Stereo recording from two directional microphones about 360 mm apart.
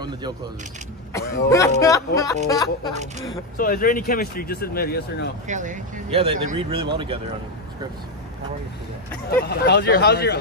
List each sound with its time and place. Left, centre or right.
1.5 s speech: centre
3.5 s speech: left
5.5 s speech: centre
9.3 s speech: left